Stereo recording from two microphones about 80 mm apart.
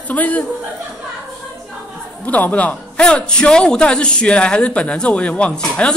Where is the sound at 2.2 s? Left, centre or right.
Centre.